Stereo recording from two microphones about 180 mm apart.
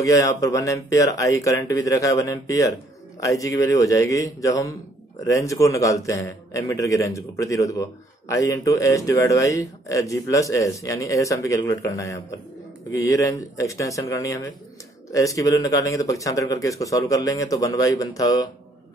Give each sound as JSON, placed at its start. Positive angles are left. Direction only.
{"t": 0.0, "sound": "a man's voice", "side_deg": 20}